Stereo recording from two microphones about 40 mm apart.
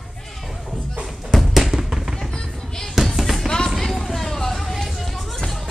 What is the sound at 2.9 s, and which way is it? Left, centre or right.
Music, centre.